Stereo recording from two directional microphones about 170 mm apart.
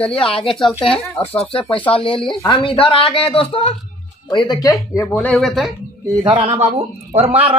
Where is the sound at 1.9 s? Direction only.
30° left (ahead or behind).